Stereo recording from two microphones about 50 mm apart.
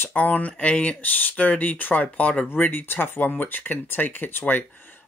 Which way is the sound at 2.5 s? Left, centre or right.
Left.